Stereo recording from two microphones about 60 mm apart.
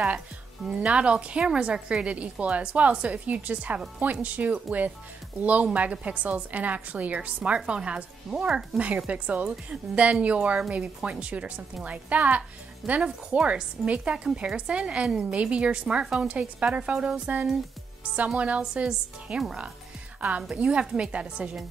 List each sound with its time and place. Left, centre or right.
0.7 s a woman's voice: centre
8.8 s a woman's voice: right